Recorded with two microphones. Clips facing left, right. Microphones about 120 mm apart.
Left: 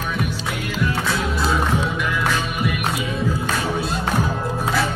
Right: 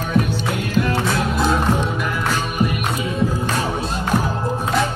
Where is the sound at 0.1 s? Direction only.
60° right (ahead or behind); by 2.7 s 40° right (ahead or behind).